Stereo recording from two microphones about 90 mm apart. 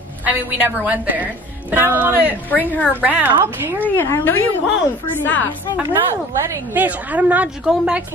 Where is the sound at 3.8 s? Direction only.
25° left (ahead or behind).